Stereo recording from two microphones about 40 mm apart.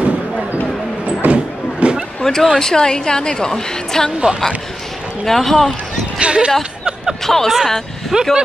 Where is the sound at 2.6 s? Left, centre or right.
Centre.